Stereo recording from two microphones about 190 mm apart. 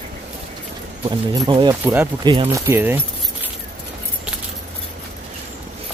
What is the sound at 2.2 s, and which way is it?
Speech, 25° right (ahead or behind).